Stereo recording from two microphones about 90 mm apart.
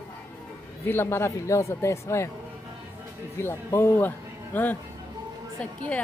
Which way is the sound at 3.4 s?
25° left (ahead or behind).